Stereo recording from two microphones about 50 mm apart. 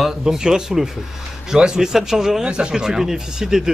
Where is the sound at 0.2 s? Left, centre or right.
Centre.